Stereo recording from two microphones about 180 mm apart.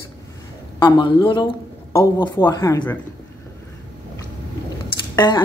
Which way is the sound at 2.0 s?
15° left (ahead or behind).